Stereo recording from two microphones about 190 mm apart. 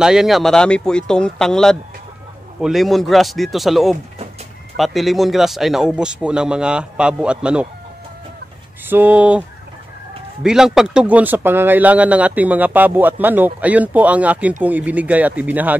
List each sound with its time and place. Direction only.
0.0 s speech: 5° right (ahead or behind)
8.8 s speech: 10° right (ahead or behind)
10.4 s speech: 5° right (ahead or behind)